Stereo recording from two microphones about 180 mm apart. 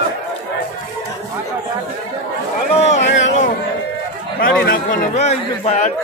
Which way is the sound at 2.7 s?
40° left (ahead or behind).